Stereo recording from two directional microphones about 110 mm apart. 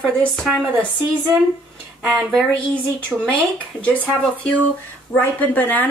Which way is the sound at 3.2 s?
15° left (ahead or behind).